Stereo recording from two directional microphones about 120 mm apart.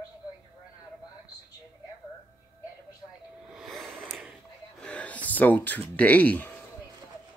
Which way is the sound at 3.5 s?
Centre (ahead or behind).